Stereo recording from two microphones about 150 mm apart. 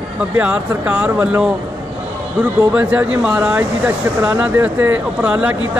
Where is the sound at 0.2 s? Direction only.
10° right (ahead or behind).